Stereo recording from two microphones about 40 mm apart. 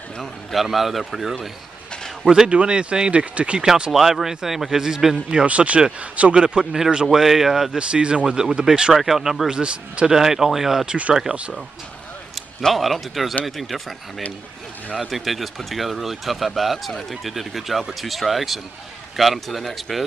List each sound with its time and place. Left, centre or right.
0.2 s speech: centre
2.4 s speech: right
3.5 s speech: right
3.9 s a man's voice: centre
5.3 s speech: right
7.1 s speech: centre
7.7 s a man's voice: right
8.9 s a man's voice: centre
9.5 s speech: right
10.0 s a man's voice: centre
11.3 s speech: right
12.7 s speech: centre